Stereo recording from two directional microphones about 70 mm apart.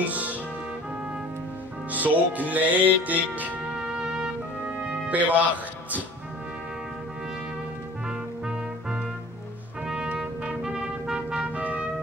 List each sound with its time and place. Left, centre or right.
0.0 s music: right
1.9 s music: right
3.8 s music: centre
8.1 s music: centre